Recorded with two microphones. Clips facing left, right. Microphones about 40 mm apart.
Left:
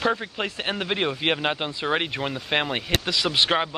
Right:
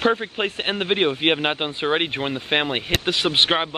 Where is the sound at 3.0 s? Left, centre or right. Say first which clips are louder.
Right 4 dB; right.